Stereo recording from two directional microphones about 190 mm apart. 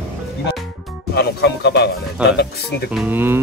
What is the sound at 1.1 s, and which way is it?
Speech, 60° left (ahead or behind).